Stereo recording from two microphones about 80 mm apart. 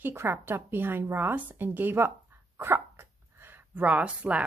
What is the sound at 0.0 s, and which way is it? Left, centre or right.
A woman's voice, right.